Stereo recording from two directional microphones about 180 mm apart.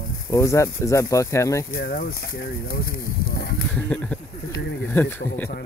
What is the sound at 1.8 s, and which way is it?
Speech, 55° left (ahead or behind).